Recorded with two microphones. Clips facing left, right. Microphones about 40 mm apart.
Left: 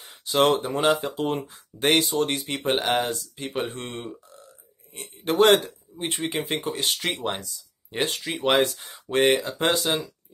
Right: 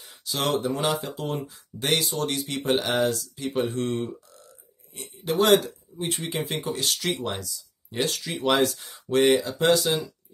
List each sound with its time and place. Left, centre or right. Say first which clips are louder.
0.0 s speech: left 7 dB; left
3.7 s speech: right 7 dB; left
4.9 s a man's voice: left 3 dB; left